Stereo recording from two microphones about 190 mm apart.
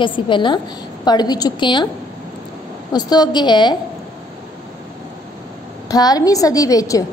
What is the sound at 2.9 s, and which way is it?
Speech, 20° left (ahead or behind).